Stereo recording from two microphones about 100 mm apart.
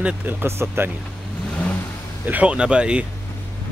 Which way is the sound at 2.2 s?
15° right (ahead or behind).